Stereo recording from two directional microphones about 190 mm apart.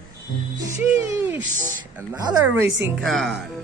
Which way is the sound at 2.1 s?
10° right (ahead or behind).